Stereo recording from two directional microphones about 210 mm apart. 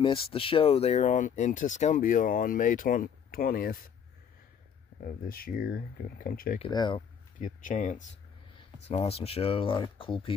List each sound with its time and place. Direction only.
0.0 s speech: 25° left (ahead or behind); by 3.9 s 45° left (ahead or behind)
5.0 s speech: 45° left (ahead or behind)
6.6 s speech: 20° left (ahead or behind)
7.3 s speech: 35° left (ahead or behind)